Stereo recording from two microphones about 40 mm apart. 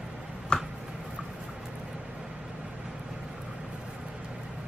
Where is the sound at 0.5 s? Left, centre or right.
Left.